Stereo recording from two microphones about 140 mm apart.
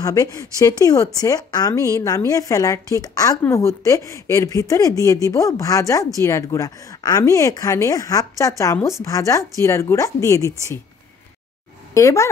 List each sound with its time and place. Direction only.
0.0 s a woman's voice: 25° left (ahead or behind)
11.9 s a woman's voice: 20° left (ahead or behind)